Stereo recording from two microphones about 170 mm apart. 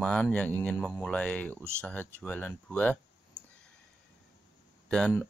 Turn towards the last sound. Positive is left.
turn(degrees=5)  # may be behind; listen again after turning